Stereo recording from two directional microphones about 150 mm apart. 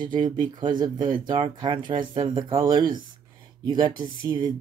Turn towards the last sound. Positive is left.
turn(degrees=-30)  # may be behind; listen again after turning